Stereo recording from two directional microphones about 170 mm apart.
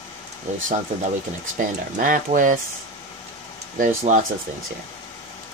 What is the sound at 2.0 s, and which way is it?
Speech, 50° right (ahead or behind).